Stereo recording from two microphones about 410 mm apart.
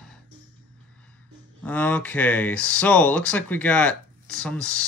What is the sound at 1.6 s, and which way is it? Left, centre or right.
Speech, centre.